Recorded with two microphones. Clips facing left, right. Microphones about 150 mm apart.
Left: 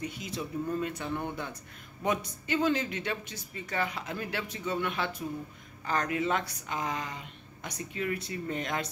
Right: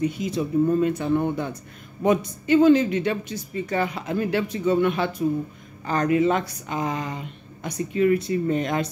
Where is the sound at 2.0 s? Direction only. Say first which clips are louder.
Right 10 dB; 20° right (ahead or behind).